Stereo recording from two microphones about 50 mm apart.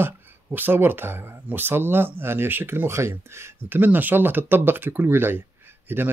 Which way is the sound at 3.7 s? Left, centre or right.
Right.